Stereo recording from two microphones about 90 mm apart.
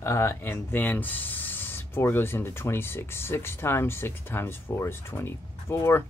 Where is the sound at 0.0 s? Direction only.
30° left (ahead or behind).